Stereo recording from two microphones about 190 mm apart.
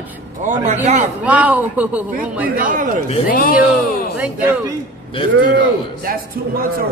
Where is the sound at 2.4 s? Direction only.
45° right (ahead or behind).